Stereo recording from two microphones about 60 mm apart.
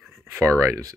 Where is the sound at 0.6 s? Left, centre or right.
Right.